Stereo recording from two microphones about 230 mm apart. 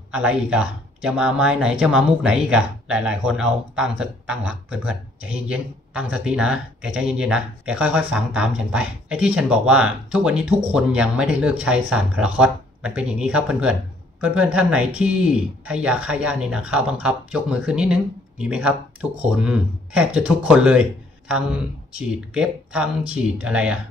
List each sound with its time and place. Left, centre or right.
0.1 s speech: centre